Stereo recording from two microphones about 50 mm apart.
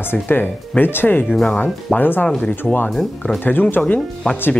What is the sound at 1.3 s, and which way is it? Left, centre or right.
Speech, centre.